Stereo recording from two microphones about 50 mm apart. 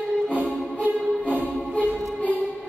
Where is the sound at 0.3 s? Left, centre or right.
Right.